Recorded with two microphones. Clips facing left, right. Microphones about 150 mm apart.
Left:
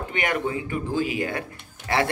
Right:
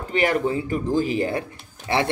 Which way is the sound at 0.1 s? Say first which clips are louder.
Right 6 dB; 35° right (ahead or behind).